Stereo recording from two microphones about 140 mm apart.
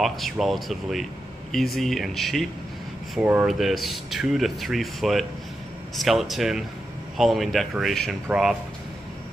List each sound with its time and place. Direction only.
0.0 s speech: centre (ahead or behind)
3.2 s speech: 10° right (ahead or behind)